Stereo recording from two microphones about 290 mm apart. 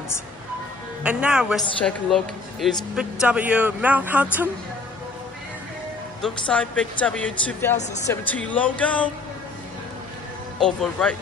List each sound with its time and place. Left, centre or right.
1.0 s a man's voice: centre
6.5 s a man's voice: centre
7.7 s speech: left
8.1 s a man's voice: centre
10.6 s a man's voice: centre